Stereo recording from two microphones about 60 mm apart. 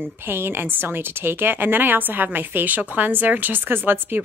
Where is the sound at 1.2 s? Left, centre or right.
Right.